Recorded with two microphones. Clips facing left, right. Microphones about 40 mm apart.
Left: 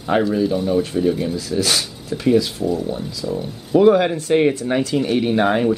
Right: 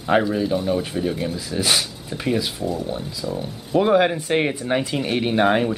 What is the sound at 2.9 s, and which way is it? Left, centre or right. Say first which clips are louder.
Speech: left 3 dB; centre.